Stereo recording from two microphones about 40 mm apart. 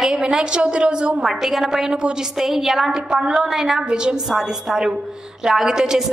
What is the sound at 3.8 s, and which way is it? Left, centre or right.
A woman's voice, right.